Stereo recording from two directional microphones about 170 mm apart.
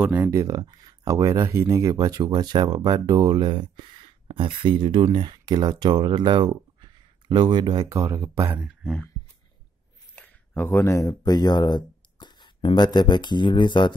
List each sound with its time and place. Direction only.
0.0 s speech: 10° right (ahead or behind)
8.8 s speech: centre (ahead or behind)
10.1 s speech: 10° left (ahead or behind); by 13.9 s 25° left (ahead or behind)